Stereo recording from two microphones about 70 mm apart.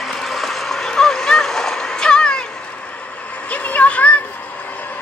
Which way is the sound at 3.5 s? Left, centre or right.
Centre.